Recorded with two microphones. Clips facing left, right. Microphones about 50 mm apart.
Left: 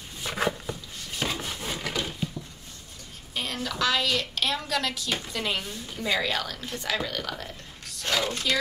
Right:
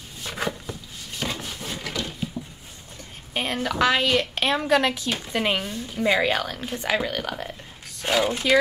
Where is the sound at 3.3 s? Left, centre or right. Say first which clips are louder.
Right 6 dB; right.